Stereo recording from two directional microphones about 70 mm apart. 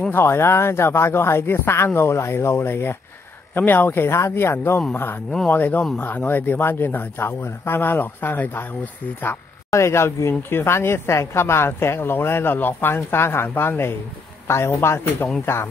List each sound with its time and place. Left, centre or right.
0.1 s speech: left
9.7 s speech: left